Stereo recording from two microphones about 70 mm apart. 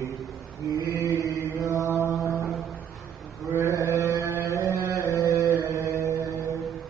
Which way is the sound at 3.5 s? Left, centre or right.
Right.